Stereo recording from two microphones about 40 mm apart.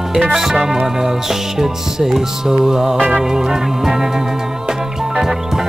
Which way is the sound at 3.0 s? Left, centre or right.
Right.